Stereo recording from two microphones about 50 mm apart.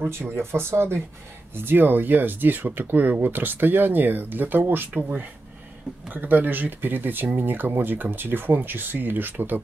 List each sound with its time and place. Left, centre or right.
0.0 s speech: right
1.5 s speech: right
4.9 s speech: right